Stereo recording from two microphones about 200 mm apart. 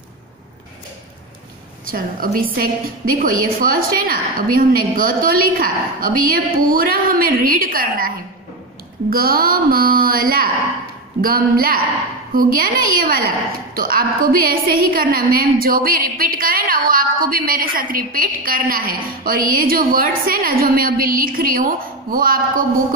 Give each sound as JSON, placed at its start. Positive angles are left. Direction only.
{"t": 1.9, "sound": "a woman's voice", "side_deg": -45}
{"t": 9.1, "sound": "a woman's voice", "side_deg": -45}